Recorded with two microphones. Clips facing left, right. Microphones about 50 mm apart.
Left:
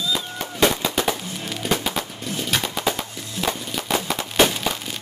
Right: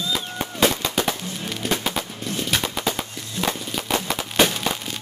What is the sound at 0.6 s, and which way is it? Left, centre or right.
Machine gun, centre.